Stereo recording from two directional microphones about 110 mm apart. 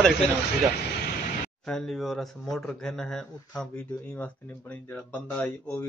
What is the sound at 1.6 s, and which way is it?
Speech, 5° left (ahead or behind).